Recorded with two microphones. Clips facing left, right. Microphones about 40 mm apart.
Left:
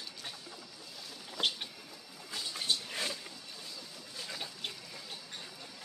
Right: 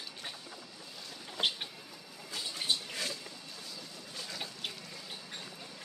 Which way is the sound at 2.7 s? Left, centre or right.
Centre.